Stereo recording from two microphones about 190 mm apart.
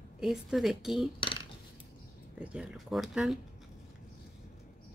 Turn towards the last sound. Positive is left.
turn(degrees=0)  # may be behind; listen again after turning